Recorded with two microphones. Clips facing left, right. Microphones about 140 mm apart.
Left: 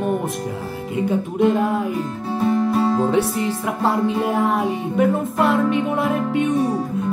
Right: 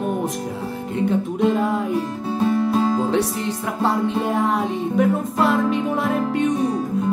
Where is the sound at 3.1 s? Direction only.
5° left (ahead or behind).